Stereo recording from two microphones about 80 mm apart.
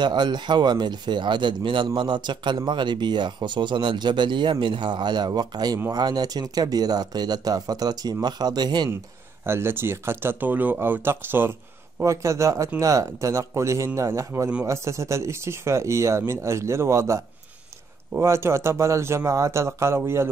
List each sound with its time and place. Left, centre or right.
0.0 s speech: right
2.0 s speech: right
9.4 s speech: right
12.0 s speech: right